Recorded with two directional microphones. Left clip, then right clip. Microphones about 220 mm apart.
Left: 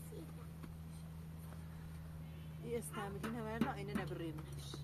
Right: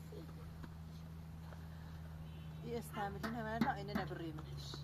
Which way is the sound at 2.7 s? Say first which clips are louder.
Right 1 dB; 20° right (ahead or behind).